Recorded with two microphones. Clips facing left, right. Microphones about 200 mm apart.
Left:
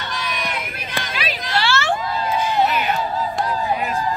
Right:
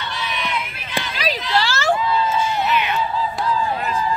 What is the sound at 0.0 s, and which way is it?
Crowd, 45° left (ahead or behind).